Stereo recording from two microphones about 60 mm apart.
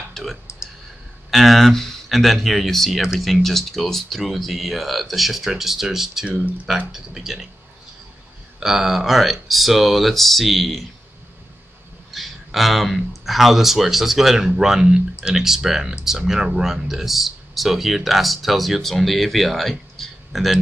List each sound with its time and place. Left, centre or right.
0.1 s clicking: centre
1.3 s speech: centre
6.2 s speech: centre
6.9 s speech: centre
8.5 s speech: centre
12.1 s speech: centre